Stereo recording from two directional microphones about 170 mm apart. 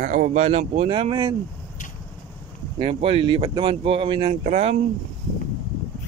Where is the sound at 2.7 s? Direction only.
35° right (ahead or behind).